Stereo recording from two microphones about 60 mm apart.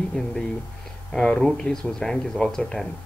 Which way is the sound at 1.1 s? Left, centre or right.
Centre.